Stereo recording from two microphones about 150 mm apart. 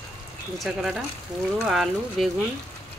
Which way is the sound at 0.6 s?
Centre (ahead or behind).